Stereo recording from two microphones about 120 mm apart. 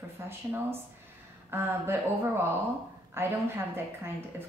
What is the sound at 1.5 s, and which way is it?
Speech, 20° right (ahead or behind).